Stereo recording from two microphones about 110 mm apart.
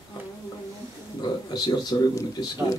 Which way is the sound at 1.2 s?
40° left (ahead or behind).